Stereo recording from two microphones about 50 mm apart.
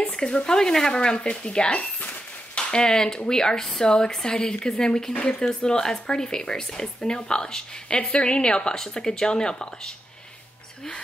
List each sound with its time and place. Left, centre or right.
0.0 s speech: left